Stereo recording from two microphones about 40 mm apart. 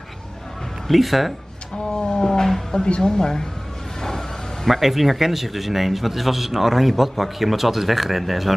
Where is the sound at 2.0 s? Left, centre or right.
Centre.